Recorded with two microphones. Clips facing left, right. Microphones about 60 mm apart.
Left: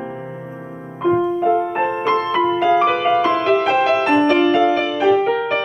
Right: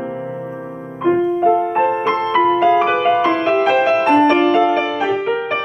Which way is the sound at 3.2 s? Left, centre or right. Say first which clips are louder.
Right 1 dB; right.